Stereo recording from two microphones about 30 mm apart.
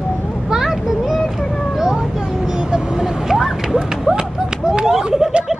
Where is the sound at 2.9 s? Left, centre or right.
Centre.